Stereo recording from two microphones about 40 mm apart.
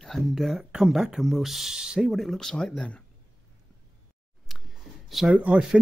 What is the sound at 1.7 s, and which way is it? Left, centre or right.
Speech, centre.